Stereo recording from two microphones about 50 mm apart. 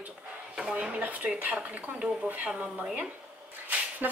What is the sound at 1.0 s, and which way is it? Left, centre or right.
Speech, right.